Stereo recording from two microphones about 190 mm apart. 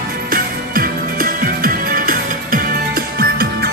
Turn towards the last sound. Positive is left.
turn(degrees=-55)  # may be behind; listen again after turning